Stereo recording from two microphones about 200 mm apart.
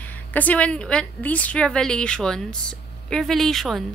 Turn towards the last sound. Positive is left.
turn(degrees=0)  # may be behind; listen again after turning